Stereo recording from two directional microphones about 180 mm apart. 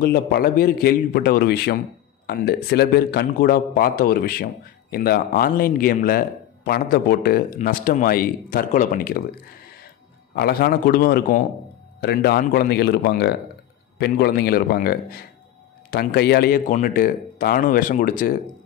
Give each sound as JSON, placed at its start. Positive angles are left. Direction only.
{"t": 0.0, "sound": "a man's voice", "side_deg": 55}
{"t": 10.3, "sound": "a man's voice", "side_deg": 60}